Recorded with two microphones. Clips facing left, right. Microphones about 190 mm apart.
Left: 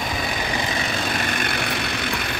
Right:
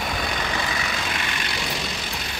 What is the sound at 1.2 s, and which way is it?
Vehicle, 50° left (ahead or behind).